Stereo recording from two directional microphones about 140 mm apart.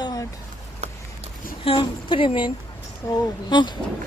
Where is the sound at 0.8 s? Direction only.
50° right (ahead or behind).